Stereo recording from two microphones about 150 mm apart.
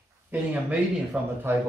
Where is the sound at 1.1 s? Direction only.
15° right (ahead or behind).